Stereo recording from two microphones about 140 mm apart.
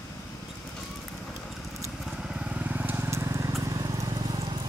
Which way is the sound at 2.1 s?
5° right (ahead or behind).